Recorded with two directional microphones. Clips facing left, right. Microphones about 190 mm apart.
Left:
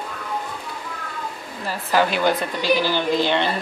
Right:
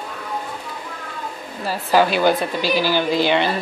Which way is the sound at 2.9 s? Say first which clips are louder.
Right 2 dB; 10° right (ahead or behind).